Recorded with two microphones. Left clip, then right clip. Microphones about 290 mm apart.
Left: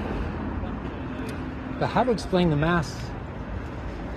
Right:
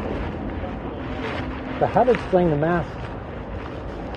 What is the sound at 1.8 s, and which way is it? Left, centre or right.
Speech, left.